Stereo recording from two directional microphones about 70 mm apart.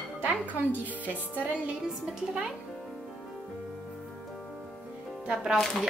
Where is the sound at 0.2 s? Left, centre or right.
Right.